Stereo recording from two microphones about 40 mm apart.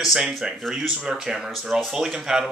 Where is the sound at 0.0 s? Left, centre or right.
Centre.